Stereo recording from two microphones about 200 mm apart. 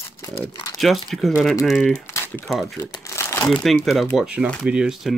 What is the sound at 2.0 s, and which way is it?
Typing, 15° left (ahead or behind).